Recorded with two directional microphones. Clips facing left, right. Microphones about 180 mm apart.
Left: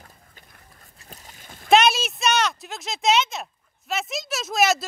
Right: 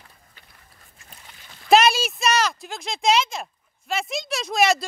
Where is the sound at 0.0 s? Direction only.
45° left (ahead or behind).